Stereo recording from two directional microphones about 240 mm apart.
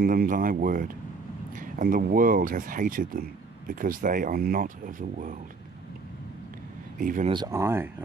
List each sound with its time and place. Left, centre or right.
0.0 s speech: right
7.0 s speech: right
7.2 s speech: centre